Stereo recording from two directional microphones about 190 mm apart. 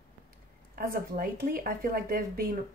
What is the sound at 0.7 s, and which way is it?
Speech, 50° right (ahead or behind).